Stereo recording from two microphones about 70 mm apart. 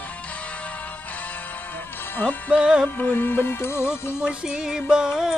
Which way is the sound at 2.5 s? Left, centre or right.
Centre.